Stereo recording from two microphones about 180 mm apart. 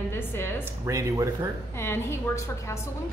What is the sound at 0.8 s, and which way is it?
Speech, 15° right (ahead or behind).